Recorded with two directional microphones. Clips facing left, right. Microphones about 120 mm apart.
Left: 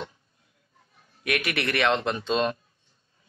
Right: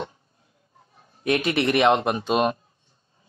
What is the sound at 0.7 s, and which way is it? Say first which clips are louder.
Speech: right 5 dB; 30° right (ahead or behind).